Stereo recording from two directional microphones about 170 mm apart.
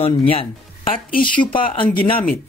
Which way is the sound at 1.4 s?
30° left (ahead or behind).